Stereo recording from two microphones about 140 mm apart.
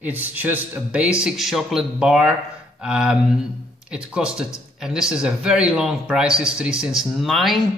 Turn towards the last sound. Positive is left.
turn(degrees=0)  # may be behind; listen again after turning